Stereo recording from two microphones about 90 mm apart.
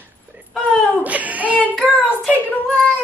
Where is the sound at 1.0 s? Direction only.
15° right (ahead or behind).